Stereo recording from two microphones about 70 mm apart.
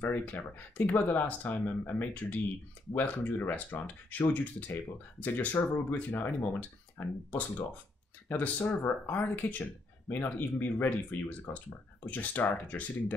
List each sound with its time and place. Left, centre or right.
0.0 s speech: left